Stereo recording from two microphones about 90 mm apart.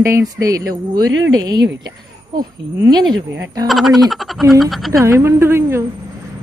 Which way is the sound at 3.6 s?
Centre (ahead or behind).